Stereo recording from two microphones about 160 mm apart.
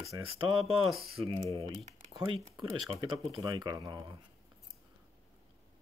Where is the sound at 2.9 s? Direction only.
30° right (ahead or behind).